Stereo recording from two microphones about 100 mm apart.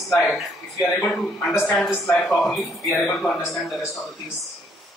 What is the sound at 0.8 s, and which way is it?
Speech, 15° left (ahead or behind).